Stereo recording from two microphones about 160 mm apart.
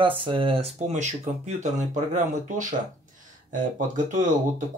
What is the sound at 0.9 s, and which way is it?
Speech, 45° right (ahead or behind).